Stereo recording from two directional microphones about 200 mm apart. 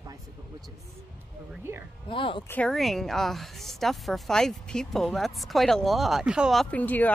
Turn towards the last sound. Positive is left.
turn(degrees=10)  # may be behind; listen again after turning